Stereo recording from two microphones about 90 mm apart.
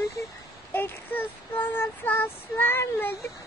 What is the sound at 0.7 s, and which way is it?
Child singing, 25° left (ahead or behind).